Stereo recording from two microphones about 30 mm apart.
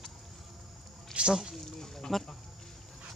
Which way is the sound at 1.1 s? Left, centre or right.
Right.